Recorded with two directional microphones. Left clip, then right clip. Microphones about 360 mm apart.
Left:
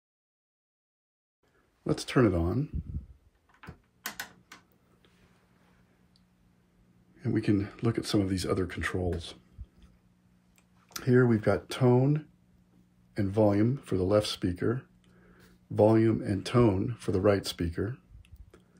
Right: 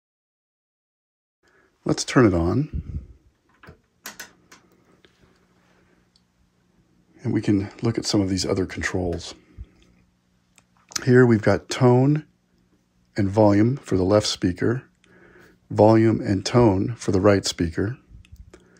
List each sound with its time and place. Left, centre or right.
1.9 s speech: centre
7.2 s speech: centre
10.5 s speech: right